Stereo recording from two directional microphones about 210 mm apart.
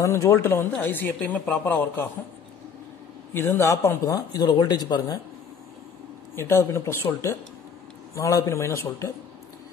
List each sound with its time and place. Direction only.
0.0 s speech: 15° left (ahead or behind)
3.3 s speech: 10° left (ahead or behind)
6.3 s speech: 10° left (ahead or behind)